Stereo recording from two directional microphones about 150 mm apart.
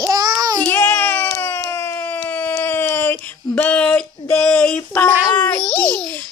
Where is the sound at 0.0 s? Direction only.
25° right (ahead or behind).